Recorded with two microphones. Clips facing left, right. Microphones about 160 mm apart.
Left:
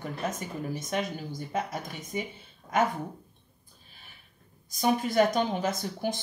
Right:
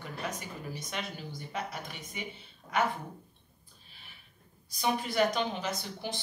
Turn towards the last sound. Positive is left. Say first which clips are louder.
# left 6 dB
turn(degrees=45)  # may be behind; listen again after turning